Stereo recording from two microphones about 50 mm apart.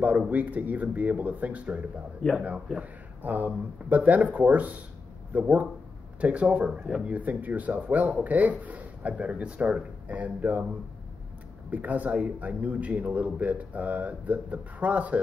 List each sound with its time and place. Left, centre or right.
0.3 s speech: right
3.2 s speech: right; by 7.0 s centre
7.1 s speech: right
11.7 s speech: right